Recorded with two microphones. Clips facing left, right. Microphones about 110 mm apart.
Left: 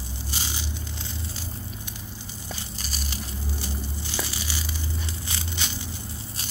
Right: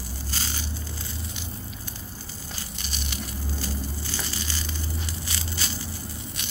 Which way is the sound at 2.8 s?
40° left (ahead or behind).